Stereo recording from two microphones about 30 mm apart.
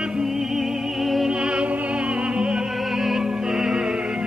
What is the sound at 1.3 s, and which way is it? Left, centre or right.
Music, right.